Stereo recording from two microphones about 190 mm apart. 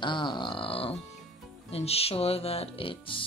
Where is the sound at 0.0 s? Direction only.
25° left (ahead or behind).